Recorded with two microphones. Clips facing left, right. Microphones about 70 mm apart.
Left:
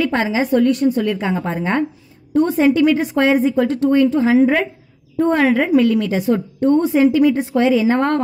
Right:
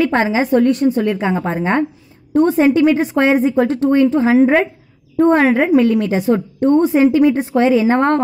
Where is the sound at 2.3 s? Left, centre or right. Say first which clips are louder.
Right 2 dB; right.